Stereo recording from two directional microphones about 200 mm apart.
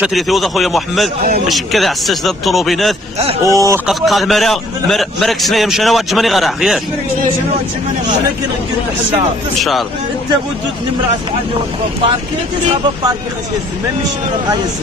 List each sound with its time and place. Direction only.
0.0 s a man's voice: centre (ahead or behind)
3.4 s speech: 15° right (ahead or behind)
3.8 s a man's voice: centre (ahead or behind)
9.6 s a man's voice: centre (ahead or behind)